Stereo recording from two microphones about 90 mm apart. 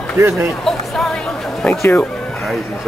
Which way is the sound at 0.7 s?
5° left (ahead or behind).